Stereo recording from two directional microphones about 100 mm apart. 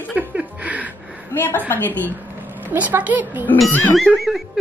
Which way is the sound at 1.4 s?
20° left (ahead or behind).